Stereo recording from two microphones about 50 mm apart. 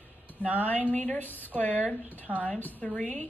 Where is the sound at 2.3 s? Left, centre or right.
Right.